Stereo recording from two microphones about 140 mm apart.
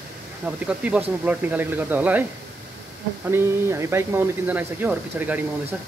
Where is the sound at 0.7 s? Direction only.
10° right (ahead or behind).